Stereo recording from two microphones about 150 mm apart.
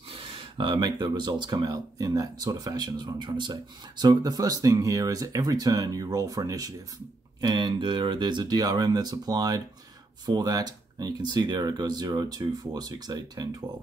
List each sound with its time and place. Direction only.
0.1 s speech: 35° right (ahead or behind)